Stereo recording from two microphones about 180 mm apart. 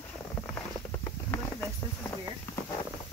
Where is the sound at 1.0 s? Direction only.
10° left (ahead or behind).